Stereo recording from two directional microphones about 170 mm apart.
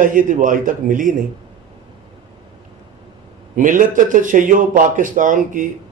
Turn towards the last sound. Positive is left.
turn(degrees=-50)  # may be behind; listen again after turning